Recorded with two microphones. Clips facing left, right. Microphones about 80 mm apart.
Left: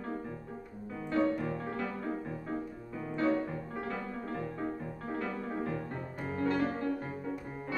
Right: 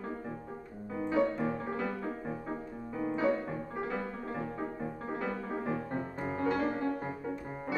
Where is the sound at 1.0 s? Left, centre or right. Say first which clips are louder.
Right 1 dB; centre.